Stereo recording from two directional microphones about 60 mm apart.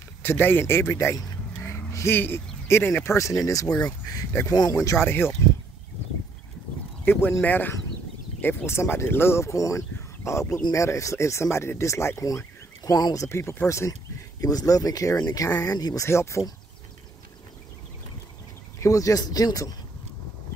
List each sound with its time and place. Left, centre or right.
0.2 s speech: left
1.6 s vehicle: left
2.1 s speech: left
4.9 s speech: left
7.1 s speech: left
12.2 s speech: left
14.4 s speech: left
15.6 s speech: left
16.1 s speech: left
18.8 s speech: left